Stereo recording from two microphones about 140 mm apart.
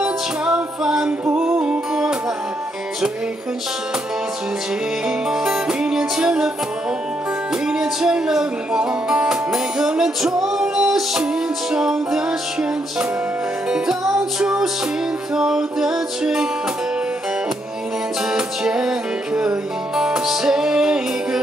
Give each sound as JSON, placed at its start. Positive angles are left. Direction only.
{"t": 0.0, "sound": "music", "side_deg": -5}
{"t": 5.3, "sound": "music", "side_deg": -5}
{"t": 7.6, "sound": "music", "side_deg": -5}
{"t": 13.7, "sound": "music", "side_deg": -5}
{"t": 18.3, "sound": "music", "side_deg": -5}